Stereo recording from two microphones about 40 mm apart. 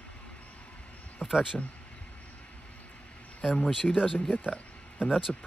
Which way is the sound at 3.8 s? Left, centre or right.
Left.